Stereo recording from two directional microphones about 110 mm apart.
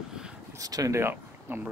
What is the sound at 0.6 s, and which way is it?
Speech, 35° right (ahead or behind).